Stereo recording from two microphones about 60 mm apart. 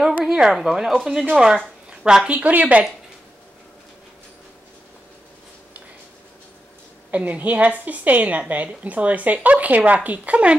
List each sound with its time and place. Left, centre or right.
0.2 s speech: centre
1.9 s a sound: centre
2.2 s a woman's voice: right
7.1 s a woman's voice: right